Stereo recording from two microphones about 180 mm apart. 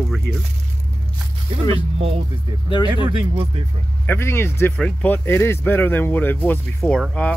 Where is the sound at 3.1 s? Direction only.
30° right (ahead or behind).